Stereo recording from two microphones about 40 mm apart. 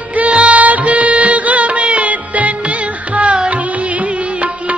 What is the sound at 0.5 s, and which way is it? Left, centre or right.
Music, right.